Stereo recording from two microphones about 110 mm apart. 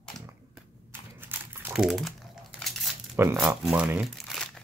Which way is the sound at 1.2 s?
20° right (ahead or behind).